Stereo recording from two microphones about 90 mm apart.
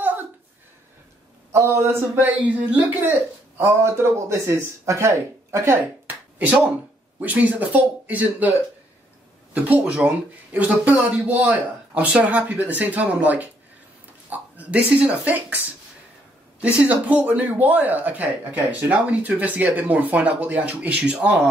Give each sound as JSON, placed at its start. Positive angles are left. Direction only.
{"t": 0.0, "sound": "a sound", "side_deg": -20}
{"t": 1.5, "sound": "speech", "side_deg": -30}
{"t": 6.3, "sound": "speech", "side_deg": -15}
{"t": 16.6, "sound": "speech", "side_deg": -15}